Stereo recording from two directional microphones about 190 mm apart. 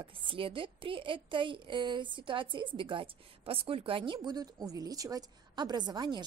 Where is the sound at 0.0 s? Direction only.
25° right (ahead or behind).